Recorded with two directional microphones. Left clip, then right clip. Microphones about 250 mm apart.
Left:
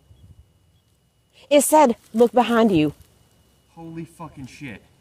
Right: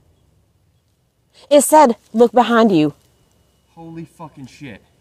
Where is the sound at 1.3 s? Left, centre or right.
Centre.